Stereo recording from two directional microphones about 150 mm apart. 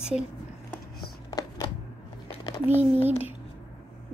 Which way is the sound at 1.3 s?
25° left (ahead or behind).